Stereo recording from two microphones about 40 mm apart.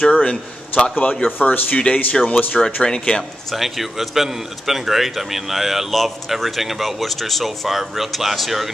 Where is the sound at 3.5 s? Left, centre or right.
Centre.